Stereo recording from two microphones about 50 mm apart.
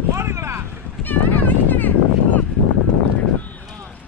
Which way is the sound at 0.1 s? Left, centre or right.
Right.